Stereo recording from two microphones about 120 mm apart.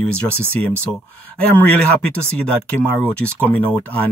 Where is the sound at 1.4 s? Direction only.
10° left (ahead or behind).